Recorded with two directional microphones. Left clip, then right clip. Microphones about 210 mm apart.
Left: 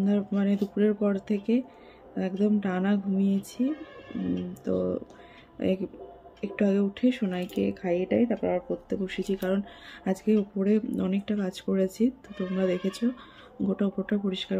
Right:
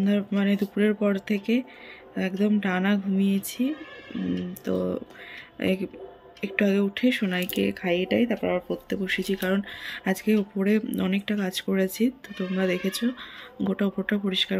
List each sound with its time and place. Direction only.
0.0 s speech: centre (ahead or behind)